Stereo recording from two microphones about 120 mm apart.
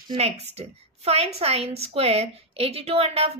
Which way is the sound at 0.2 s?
60° right (ahead or behind).